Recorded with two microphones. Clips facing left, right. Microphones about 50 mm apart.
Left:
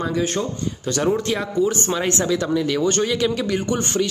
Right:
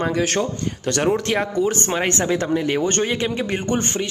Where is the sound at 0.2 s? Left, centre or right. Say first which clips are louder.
Right 2 dB; right.